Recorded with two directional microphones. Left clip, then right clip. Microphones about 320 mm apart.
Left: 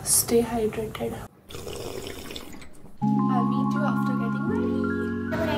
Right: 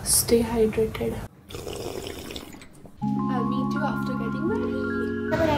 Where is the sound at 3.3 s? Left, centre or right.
Centre.